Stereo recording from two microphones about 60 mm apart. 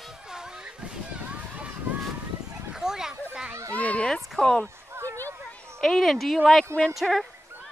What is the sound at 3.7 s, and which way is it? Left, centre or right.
Speech, left.